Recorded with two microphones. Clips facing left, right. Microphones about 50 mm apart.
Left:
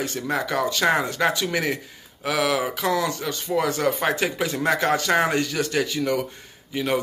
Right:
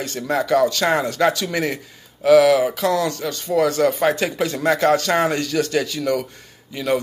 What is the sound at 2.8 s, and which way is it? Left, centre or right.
Speech, left.